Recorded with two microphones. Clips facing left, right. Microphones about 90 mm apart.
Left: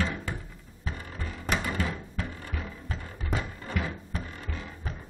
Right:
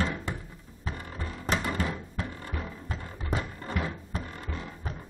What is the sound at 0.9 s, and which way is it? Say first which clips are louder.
Music: right 1 dB; 25° right (ahead or behind).